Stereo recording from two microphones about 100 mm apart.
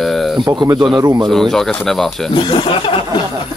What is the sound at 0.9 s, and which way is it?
Speech, 40° right (ahead or behind).